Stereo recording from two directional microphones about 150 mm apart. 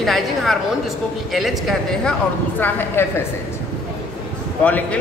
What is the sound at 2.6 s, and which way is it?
Speech, 15° left (ahead or behind).